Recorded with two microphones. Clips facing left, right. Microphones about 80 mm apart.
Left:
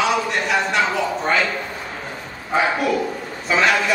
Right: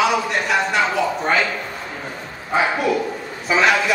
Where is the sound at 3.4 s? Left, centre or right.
Centre.